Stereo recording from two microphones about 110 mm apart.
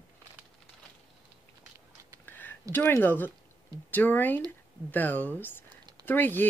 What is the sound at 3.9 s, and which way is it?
Speech, 15° left (ahead or behind).